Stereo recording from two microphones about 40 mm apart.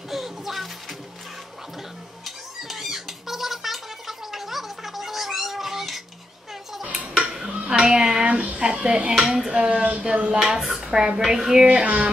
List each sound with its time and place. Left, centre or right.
0.1 s music: centre
2.2 s squawk: centre
7.2 s dishes: centre
7.6 s music: right
8.3 s speech: right
9.2 s a woman's voice: centre
9.5 s speech: right
10.4 s a woman's voice: centre
11.6 s speech: right